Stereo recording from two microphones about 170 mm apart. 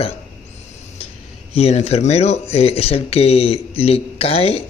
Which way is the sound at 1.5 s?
35° left (ahead or behind).